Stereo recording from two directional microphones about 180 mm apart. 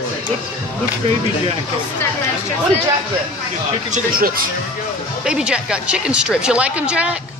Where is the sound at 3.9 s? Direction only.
55° right (ahead or behind).